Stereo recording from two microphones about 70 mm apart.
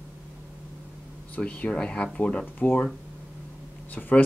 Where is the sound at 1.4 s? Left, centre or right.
Centre.